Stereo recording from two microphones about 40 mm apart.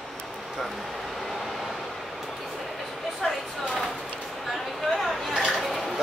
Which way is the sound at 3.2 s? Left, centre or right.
Centre.